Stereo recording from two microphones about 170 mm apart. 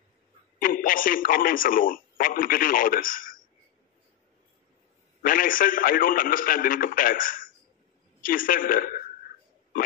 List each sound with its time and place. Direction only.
0.6 s speech: 55° left (ahead or behind)
5.2 s a man's voice: 55° left (ahead or behind)